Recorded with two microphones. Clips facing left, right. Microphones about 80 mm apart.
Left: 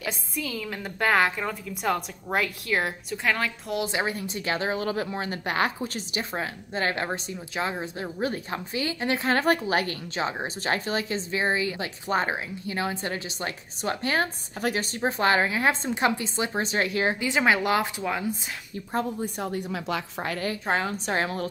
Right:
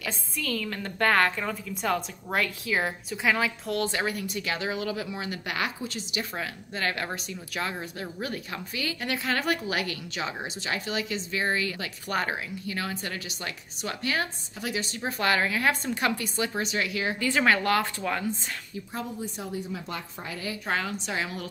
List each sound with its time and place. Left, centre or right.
0.0 s a woman's voice: centre
3.7 s speech: centre; by 11.4 s left
11.4 s a woman's voice: left
15.0 s a woman's voice: left
17.2 s speech: centre
18.9 s a woman's voice: left
20.6 s a woman's voice: left
20.9 s speech: left